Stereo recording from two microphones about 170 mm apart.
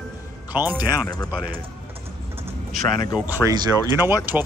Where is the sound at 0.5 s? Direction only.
10° right (ahead or behind).